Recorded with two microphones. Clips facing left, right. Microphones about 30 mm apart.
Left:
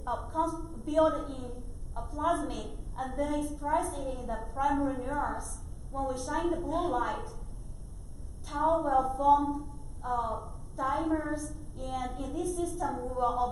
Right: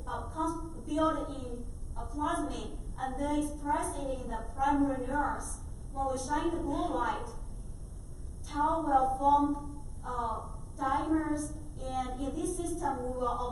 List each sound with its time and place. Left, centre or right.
0.0 s a woman's voice: centre
6.7 s a woman's voice: centre
7.0 s a woman's voice: centre
8.5 s a woman's voice: centre